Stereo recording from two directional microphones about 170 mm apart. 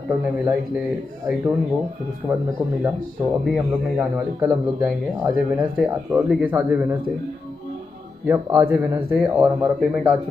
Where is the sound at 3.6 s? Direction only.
10° right (ahead or behind).